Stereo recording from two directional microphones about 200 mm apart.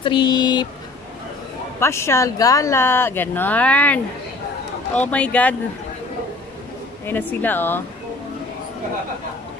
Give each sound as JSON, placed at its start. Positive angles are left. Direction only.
{"t": 0.0, "sound": "speech", "side_deg": 20}
{"t": 1.8, "sound": "speech", "side_deg": 15}
{"t": 7.1, "sound": "speech", "side_deg": 10}